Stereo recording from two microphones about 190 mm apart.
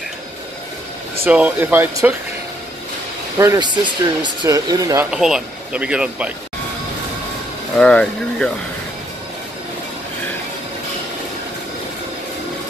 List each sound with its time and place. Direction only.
1.2 s speech: 10° right (ahead or behind)
3.3 s speech: 20° right (ahead or behind)
5.1 s speech: 5° right (ahead or behind)
7.7 s speech: 5° left (ahead or behind)